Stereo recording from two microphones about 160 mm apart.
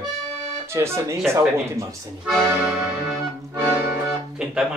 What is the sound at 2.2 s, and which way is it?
Music, 10° right (ahead or behind).